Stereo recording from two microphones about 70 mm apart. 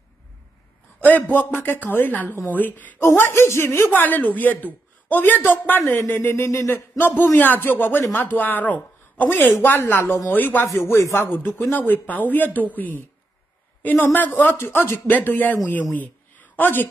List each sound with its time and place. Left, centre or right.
1.0 s speech: left
3.0 s a woman's voice: left
7.3 s speech: left
10.9 s speech: left
11.2 s speech: left
14.5 s speech: left
15.9 s a sound: left